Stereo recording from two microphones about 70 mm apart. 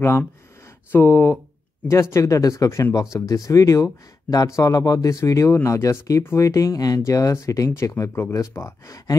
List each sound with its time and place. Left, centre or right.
0.9 s speech: left
4.7 s speech: left
7.1 s speech: left
8.8 s speech: left